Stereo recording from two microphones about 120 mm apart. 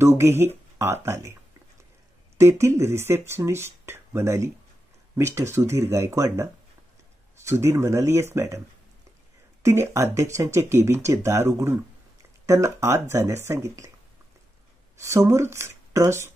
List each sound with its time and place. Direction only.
0.0 s speech: 20° right (ahead or behind)
2.3 s speech: 25° right (ahead or behind)
15.0 s speech: 25° right (ahead or behind)